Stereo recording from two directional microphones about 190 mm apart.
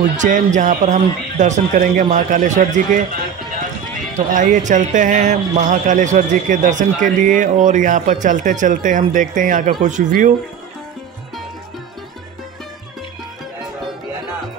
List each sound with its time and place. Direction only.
0.2 s a man's voice: 40° right (ahead or behind)
4.3 s a man's voice: 40° right (ahead or behind)